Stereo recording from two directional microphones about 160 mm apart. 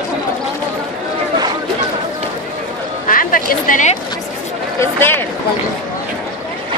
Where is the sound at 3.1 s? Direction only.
60° left (ahead or behind).